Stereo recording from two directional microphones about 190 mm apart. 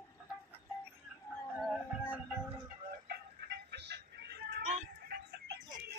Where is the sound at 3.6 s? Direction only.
60° right (ahead or behind).